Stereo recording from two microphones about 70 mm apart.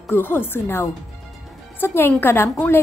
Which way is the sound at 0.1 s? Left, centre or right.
Left.